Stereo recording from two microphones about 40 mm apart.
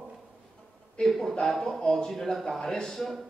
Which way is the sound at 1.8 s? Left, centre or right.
Centre.